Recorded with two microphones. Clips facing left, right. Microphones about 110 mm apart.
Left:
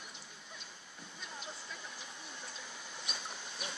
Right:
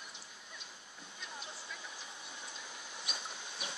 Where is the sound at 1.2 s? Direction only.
Centre (ahead or behind).